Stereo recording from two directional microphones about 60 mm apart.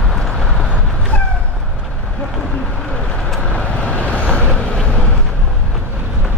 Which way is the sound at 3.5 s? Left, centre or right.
Left.